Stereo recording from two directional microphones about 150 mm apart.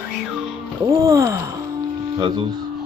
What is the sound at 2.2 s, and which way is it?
Speech, 30° right (ahead or behind).